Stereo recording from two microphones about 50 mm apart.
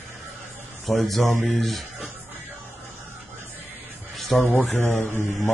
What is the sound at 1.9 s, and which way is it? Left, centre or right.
Music, right.